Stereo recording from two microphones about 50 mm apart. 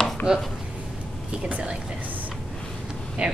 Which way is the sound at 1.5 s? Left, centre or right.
Right.